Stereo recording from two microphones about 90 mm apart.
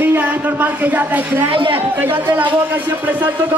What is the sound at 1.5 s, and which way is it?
Speech, 80° right.